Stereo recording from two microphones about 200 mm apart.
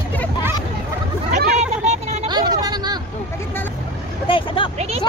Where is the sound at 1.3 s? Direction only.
35° right (ahead or behind).